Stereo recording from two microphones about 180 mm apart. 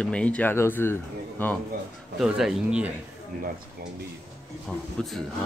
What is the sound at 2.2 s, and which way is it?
Speech, 5° right (ahead or behind).